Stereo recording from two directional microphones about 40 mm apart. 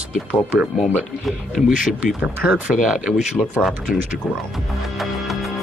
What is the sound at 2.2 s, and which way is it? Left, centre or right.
Speech, right.